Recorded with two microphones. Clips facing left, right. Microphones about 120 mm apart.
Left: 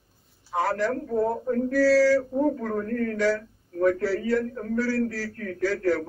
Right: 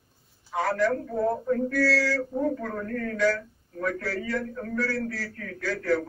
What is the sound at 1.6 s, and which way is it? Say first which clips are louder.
Speech: left 10 dB; 30° left (ahead or behind).